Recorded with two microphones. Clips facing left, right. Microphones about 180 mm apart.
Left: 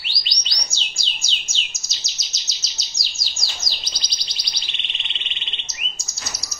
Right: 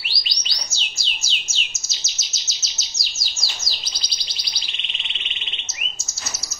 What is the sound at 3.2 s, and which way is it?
Bird, 5° right (ahead or behind).